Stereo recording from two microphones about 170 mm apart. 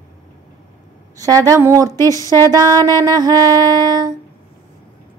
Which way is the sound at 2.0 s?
15° left (ahead or behind).